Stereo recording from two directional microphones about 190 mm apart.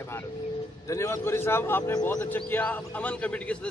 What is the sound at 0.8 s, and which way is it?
A man's voice, 15° left (ahead or behind).